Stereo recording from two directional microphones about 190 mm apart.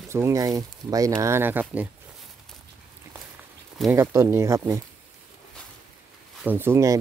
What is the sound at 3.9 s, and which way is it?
Speech, 15° right (ahead or behind).